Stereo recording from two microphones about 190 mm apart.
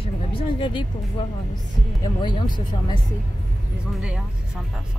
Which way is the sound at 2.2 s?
25° left (ahead or behind).